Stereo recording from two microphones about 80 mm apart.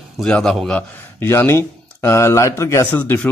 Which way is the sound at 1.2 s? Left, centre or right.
Left.